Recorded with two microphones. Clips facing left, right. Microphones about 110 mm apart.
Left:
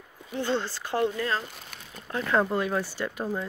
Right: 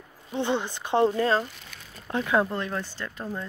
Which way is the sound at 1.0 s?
30° right (ahead or behind).